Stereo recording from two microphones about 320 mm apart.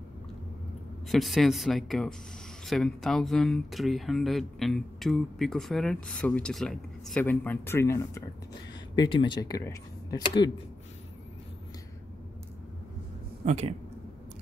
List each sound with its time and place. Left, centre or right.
1.0 s speech: centre
13.5 s speech: right